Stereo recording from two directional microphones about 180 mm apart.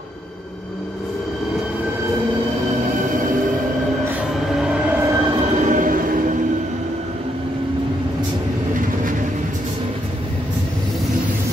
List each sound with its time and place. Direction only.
4.6 s train: 5° right (ahead or behind)
5.4 s train: 40° right (ahead or behind)